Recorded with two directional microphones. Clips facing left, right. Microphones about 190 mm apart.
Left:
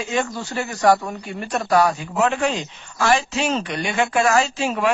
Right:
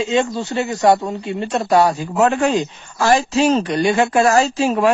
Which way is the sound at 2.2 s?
45° right (ahead or behind).